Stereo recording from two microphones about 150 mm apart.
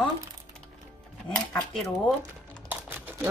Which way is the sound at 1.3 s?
5° left (ahead or behind).